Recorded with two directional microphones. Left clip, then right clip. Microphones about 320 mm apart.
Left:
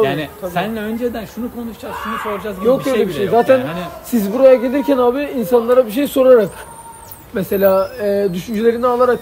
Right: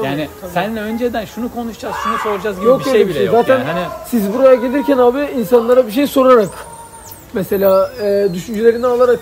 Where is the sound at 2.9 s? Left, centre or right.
Right.